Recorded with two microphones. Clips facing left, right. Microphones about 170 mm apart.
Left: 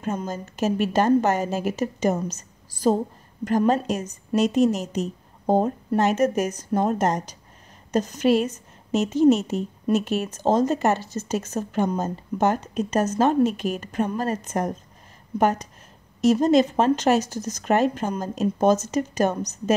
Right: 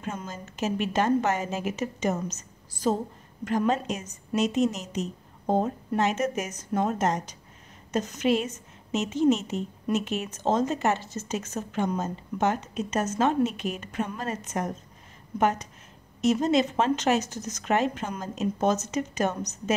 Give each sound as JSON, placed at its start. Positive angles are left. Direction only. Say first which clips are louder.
{"t": 0.0, "sound": "a woman's voice", "louder": "left 7 dB", "side_deg": 40}